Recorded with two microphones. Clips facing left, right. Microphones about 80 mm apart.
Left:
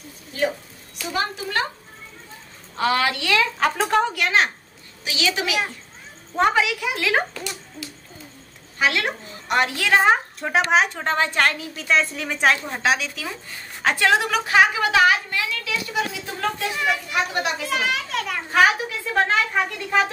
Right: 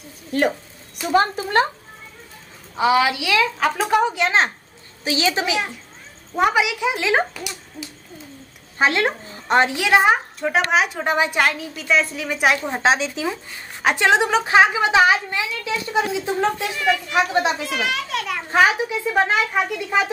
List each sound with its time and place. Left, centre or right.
0.3 s speech: right
1.1 s a woman's voice: right
2.7 s a woman's voice: centre
4.1 s a woman's voice: right
6.3 s a woman's voice: centre
8.7 s a woman's voice: right; by 10.1 s centre
10.7 s a woman's voice: centre
11.5 s a woman's voice: centre
12.6 s a woman's voice: right
17.6 s a woman's voice: centre
18.5 s a woman's voice: right